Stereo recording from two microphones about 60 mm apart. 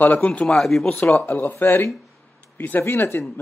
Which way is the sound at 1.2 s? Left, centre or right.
Left.